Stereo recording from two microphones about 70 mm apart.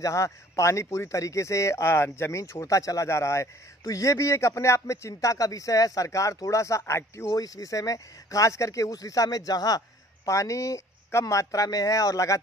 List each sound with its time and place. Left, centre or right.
0.0 s speech: left
7.3 s speech: left